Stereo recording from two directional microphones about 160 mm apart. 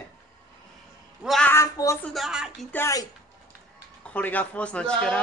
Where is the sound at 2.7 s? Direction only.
20° left (ahead or behind).